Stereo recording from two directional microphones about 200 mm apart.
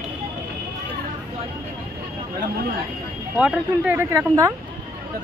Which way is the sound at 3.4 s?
5° right (ahead or behind).